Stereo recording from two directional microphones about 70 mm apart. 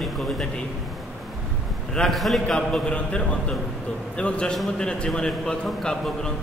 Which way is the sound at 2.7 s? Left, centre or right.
Centre.